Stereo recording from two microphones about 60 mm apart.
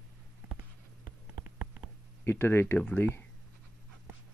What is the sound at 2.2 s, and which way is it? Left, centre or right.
Speech, left.